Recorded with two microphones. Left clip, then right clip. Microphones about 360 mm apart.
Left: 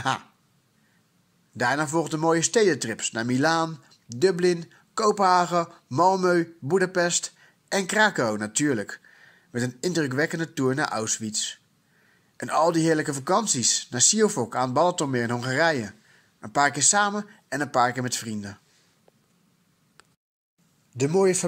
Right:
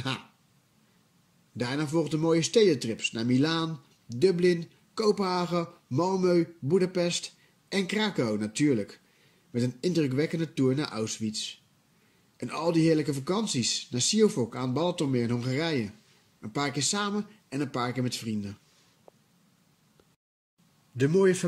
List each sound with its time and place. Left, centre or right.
1.6 s speech: centre
20.9 s speech: centre